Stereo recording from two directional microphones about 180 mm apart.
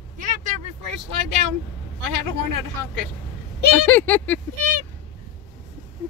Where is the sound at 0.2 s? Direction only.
45° right (ahead or behind).